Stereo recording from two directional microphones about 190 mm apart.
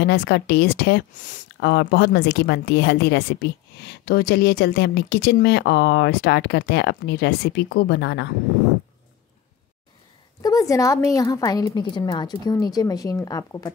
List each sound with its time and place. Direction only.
0.0 s a woman's voice: 60° left (ahead or behind)
1.1 s speech: 40° left (ahead or behind)
1.6 s a woman's voice: 60° left (ahead or behind)
10.4 s a woman's voice: 20° left (ahead or behind)